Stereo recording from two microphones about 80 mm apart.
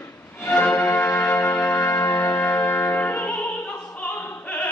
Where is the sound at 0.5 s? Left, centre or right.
Left.